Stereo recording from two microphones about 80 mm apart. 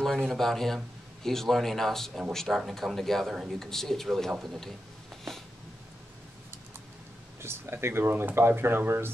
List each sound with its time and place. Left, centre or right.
0.3 s a man's voice: centre
7.4 s speech: right